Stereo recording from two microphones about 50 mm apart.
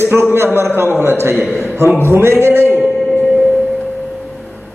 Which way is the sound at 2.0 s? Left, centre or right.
Right.